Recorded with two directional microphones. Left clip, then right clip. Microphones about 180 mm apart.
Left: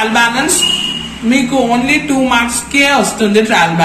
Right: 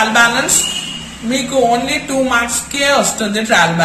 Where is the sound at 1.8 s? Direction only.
45° right (ahead or behind).